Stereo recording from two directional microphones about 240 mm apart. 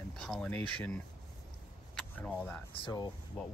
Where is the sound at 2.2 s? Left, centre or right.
Centre.